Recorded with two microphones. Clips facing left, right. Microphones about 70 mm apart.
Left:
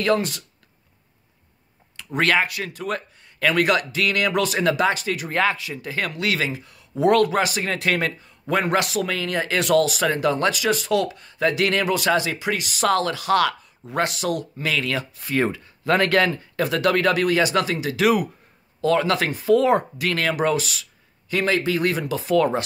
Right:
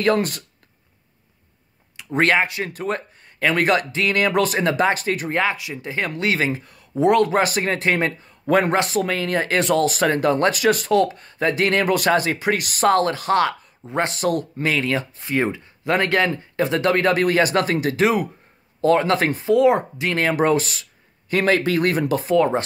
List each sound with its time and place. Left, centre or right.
0.0 s speech: right
2.1 s speech: right
2.9 s a sound: right
3.4 s speech: right
5.3 s speech: centre; by 6.9 s right
7.0 s speech: right
7.3 s speech: right
9.9 s speech: right
12.8 s speech: right
18.0 s speech: right
19.5 s speech: centre; by 22.3 s right
22.3 s speech: right